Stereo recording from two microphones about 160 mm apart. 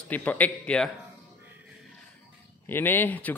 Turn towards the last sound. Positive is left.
turn(degrees=10)  # may be behind; listen again after turning